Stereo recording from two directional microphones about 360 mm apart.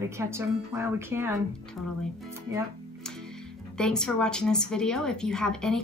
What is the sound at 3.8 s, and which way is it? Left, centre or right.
A woman's voice, centre.